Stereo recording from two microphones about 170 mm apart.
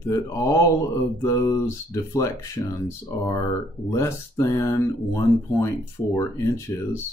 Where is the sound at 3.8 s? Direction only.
15° left (ahead or behind).